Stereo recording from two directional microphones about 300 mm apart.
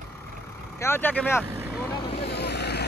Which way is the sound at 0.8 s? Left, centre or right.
Centre.